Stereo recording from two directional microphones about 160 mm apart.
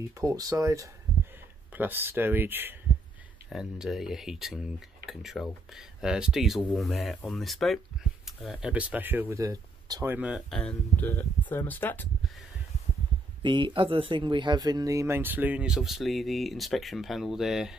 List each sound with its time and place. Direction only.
0.2 s speech: 20° right (ahead or behind)
10.1 s speech: 5° right (ahead or behind); by 12.1 s 10° left (ahead or behind)
13.4 s speech: 30° right (ahead or behind); by 17.7 s 5° right (ahead or behind)